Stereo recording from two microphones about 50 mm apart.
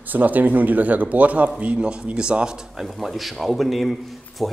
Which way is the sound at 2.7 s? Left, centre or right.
Centre.